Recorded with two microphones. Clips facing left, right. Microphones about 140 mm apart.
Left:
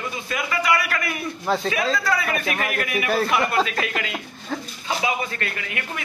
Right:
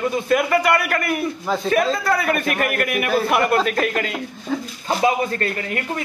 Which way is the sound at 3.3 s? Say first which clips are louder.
Right 3 dB; 50° right (ahead or behind).